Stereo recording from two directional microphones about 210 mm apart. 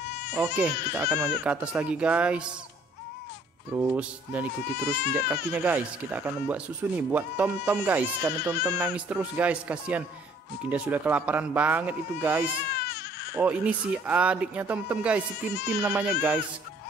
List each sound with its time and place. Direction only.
0.0 s baby cry: 50° left (ahead or behind)
0.3 s speech: 10° right (ahead or behind)
3.7 s speech: 5° right (ahead or behind)
12.7 s baby cry: 50° left (ahead or behind)
13.3 s speech: 10° right (ahead or behind)